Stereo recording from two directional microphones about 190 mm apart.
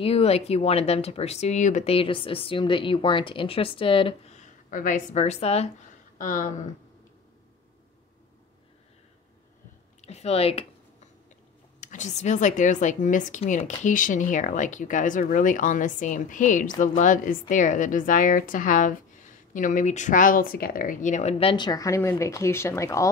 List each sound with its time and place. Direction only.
0.0 s speech: 30° left (ahead or behind)
6.1 s speech: 45° left (ahead or behind)
10.0 s speech: 35° left (ahead or behind)
11.8 s speech: 40° left (ahead or behind); by 23.0 s 15° left (ahead or behind)